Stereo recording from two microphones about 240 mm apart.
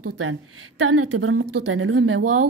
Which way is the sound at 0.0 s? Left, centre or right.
Right.